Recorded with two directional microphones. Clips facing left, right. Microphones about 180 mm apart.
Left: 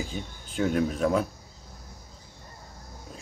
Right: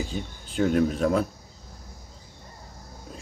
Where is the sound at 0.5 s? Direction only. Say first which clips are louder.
Right 3 dB; 35° right (ahead or behind).